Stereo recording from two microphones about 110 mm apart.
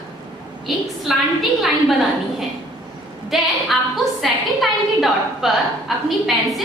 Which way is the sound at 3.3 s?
Centre (ahead or behind).